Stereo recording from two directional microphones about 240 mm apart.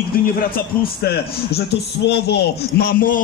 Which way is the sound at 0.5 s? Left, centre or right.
Left.